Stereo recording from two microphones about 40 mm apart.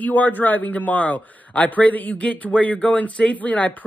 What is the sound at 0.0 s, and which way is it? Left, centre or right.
Speech, left.